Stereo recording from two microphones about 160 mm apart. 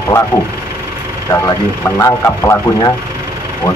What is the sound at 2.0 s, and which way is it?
Speech, 15° left (ahead or behind).